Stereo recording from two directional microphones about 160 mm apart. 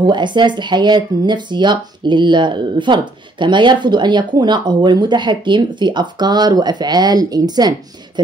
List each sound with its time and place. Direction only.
0.0 s speech: 30° right (ahead or behind)